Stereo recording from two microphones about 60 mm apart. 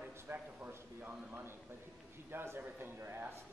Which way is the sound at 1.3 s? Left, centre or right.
Right.